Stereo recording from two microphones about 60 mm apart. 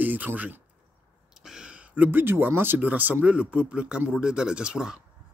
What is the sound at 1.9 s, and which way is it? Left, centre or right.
Speech, right.